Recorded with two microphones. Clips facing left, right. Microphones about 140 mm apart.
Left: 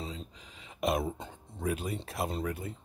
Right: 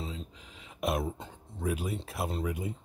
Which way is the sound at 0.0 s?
Centre (ahead or behind).